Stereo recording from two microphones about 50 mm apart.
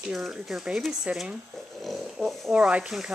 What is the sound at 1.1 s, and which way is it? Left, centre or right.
Speech, right.